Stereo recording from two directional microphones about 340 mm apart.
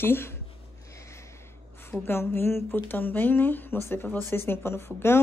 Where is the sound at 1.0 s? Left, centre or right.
Centre.